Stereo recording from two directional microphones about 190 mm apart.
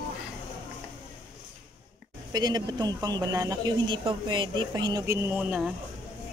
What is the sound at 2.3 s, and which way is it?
Speech, 20° right (ahead or behind).